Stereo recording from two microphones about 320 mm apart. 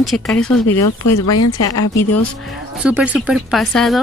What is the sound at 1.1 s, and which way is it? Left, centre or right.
Speech, left.